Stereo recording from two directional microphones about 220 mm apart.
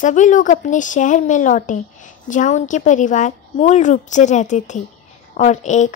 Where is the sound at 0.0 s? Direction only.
35° left (ahead or behind).